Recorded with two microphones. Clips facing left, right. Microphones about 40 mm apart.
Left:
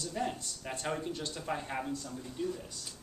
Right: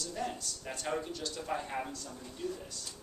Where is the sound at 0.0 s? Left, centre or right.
Centre.